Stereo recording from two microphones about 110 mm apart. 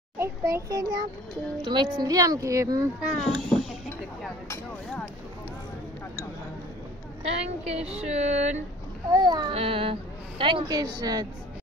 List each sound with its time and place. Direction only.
0.2 s speech: 25° right (ahead or behind)
3.3 s speech: 5° left (ahead or behind)
4.5 s a sound: 15° left (ahead or behind)
7.2 s speech: 75° right (ahead or behind)
9.1 s speech: 40° right (ahead or behind)
9.5 s a sound: 55° right (ahead or behind)
10.4 s speech: 45° right (ahead or behind)